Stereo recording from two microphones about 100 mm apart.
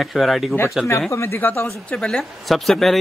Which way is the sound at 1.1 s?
30° left (ahead or behind).